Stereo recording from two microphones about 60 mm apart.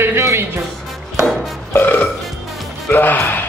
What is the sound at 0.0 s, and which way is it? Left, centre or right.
Music, right.